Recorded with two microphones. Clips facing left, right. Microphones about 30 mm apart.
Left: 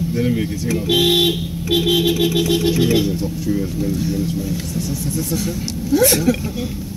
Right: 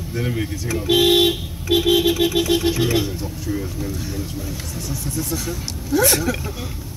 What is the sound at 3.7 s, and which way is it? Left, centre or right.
Speech, right.